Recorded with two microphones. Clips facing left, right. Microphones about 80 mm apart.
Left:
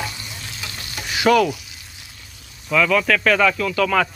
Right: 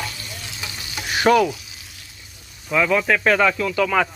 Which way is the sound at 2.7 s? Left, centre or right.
Right.